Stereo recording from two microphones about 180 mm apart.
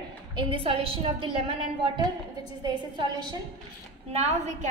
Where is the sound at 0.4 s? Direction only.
30° right (ahead or behind).